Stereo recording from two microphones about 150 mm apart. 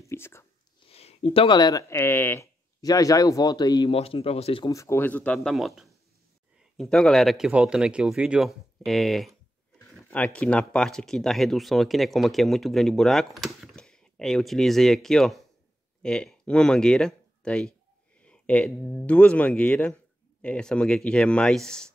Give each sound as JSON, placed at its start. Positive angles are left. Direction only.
{"t": 0.0, "sound": "whispering", "side_deg": 15}
{"t": 0.8, "sound": "speech", "side_deg": 45}
{"t": 3.9, "sound": "speech", "side_deg": 40}
{"t": 4.6, "sound": "a man's voice", "side_deg": 20}